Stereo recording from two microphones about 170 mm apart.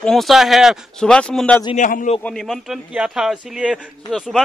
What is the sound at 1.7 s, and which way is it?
Speech, 50° left (ahead or behind).